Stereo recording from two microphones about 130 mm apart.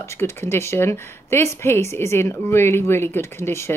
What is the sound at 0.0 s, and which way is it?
Speech, 20° left (ahead or behind).